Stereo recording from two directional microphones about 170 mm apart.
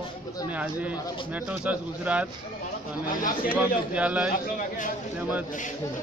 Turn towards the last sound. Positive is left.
turn(degrees=-10)  # may be behind; listen again after turning